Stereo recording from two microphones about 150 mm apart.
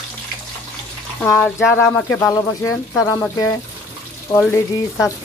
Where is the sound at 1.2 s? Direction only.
15° left (ahead or behind).